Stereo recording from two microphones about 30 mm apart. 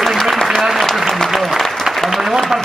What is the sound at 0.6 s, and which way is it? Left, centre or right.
A man's voice, centre.